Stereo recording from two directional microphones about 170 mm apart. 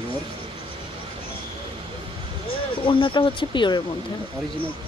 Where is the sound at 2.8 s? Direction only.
30° left (ahead or behind).